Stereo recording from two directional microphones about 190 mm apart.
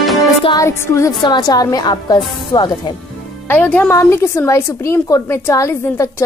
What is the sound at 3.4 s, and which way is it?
A woman's voice, 10° left (ahead or behind).